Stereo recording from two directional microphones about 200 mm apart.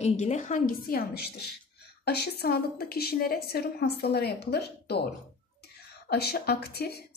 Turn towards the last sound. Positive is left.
turn(degrees=50)  # may be behind; listen again after turning